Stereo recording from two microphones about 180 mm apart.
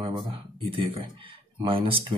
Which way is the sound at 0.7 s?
30° right (ahead or behind).